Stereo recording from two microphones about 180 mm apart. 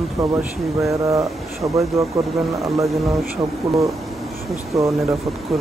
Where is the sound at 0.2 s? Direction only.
15° right (ahead or behind).